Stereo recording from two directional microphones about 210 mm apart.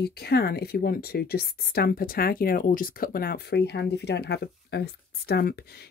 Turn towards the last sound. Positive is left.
turn(degrees=50)  # may be behind; listen again after turning